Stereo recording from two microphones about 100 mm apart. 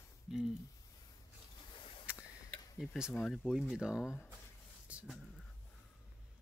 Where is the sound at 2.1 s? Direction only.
15° right (ahead or behind).